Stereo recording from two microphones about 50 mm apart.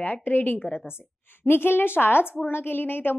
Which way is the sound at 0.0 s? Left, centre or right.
Left.